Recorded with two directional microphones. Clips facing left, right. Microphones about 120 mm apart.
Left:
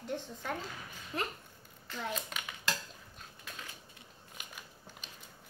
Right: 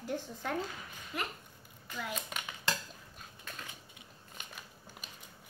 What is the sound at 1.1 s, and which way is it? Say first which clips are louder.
Speech: left 2 dB; 30° left (ahead or behind).